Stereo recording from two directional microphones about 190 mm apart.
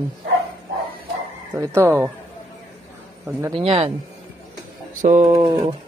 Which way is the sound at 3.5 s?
30° right (ahead or behind).